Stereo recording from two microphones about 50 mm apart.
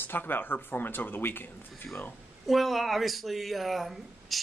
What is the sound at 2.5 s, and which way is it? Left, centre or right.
Speech, centre.